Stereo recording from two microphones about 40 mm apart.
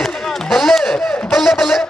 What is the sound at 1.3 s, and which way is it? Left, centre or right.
Speech, centre.